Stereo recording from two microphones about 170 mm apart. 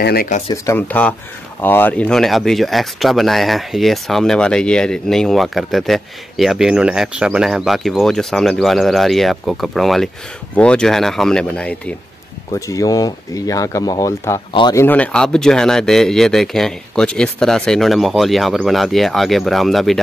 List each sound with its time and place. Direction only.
0.0 s speech: 65° left (ahead or behind)
0.5 s speech: 15° left (ahead or behind)
12.4 s speech: 20° left (ahead or behind)
14.8 s speech: 10° left (ahead or behind)